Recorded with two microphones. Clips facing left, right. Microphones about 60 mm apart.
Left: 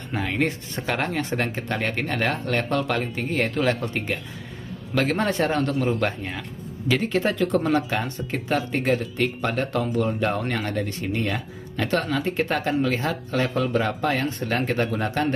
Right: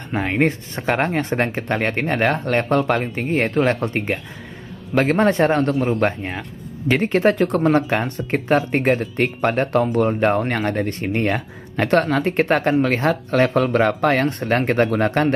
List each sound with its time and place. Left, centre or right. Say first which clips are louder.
0.1 s speech: right 5 dB; right
6.9 s speech: right 6 dB; right